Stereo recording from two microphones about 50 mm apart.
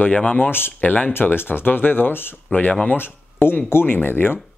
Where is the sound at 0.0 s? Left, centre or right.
Left.